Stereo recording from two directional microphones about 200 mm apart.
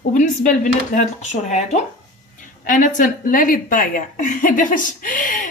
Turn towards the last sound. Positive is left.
turn(degrees=40)  # may be behind; listen again after turning